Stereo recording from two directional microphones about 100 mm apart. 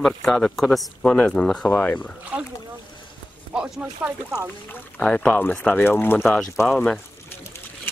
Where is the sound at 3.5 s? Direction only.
10° right (ahead or behind).